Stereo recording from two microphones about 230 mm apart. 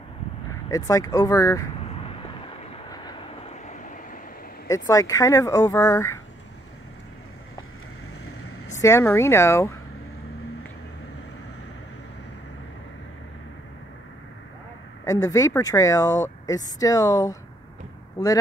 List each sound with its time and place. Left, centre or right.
0.7 s speech: centre
2.0 s vehicle: left
3.6 s vehicle: left
4.6 s speech: centre
8.6 s speech: centre
15.0 s speech: centre